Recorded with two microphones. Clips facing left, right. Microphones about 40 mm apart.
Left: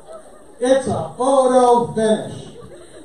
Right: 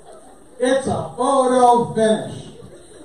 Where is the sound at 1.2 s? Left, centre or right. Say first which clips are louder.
Left 2 dB; right.